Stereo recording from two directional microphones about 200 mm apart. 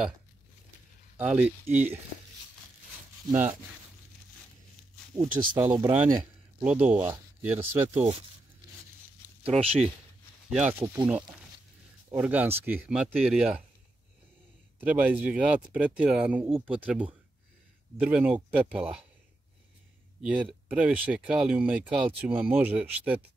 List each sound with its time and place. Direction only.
1.1 s speech: 10° right (ahead or behind)
3.3 s speech: 10° right (ahead or behind)
5.1 s speech: 20° right (ahead or behind)
6.6 s speech: 5° right (ahead or behind)
9.4 s speech: 30° right (ahead or behind)
10.5 s speech: 10° right (ahead or behind)
14.8 s speech: 10° right (ahead or behind)
20.2 s speech: 5° right (ahead or behind)